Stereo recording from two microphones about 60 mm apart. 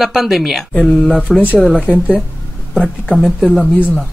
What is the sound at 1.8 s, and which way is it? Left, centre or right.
Speech, centre.